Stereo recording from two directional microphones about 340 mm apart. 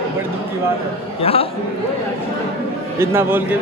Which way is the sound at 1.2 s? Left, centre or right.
Centre.